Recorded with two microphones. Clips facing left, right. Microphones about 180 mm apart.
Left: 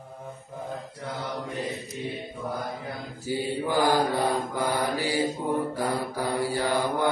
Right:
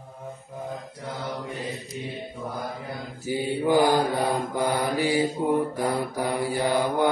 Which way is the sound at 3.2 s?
15° right (ahead or behind).